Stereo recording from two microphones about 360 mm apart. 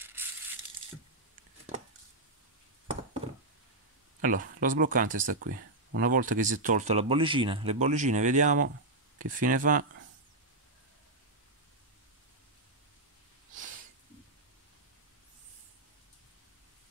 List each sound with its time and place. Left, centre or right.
0.0 s crushing: centre
4.2 s speech: right